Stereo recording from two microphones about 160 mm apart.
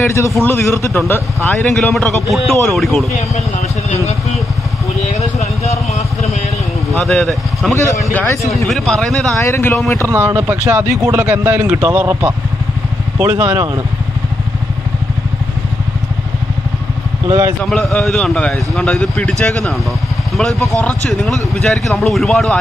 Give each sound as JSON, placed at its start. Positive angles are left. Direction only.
{"t": 0.0, "sound": "a man's voice", "side_deg": 15}
{"t": 5.0, "sound": "vehicle", "side_deg": 45}
{"t": 6.9, "sound": "a man's voice", "side_deg": 0}
{"t": 7.7, "sound": "speech", "side_deg": 20}
{"t": 8.6, "sound": "a man's voice", "side_deg": 0}
{"t": 9.4, "sound": "speech", "side_deg": 15}
{"t": 10.0, "sound": "a man's voice", "side_deg": -10}
{"t": 17.3, "sound": "a man's voice", "side_deg": -15}
{"t": 17.6, "sound": "a man's voice", "side_deg": 0}
{"t": 20.3, "sound": "a man's voice", "side_deg": 0}